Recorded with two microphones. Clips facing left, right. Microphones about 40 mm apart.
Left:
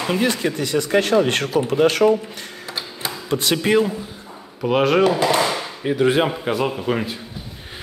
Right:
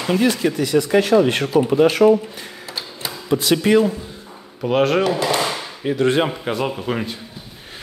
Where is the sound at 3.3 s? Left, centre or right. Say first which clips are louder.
Right 3 dB; left.